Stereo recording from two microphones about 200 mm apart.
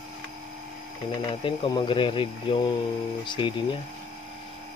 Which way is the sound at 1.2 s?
25° left (ahead or behind).